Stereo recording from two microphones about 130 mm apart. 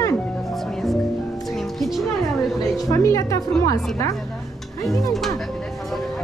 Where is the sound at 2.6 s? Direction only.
25° left (ahead or behind).